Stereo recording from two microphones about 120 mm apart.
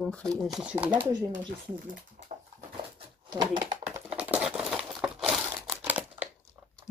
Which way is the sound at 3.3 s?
40° right (ahead or behind).